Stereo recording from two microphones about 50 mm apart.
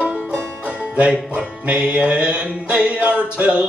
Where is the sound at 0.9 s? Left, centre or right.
Right.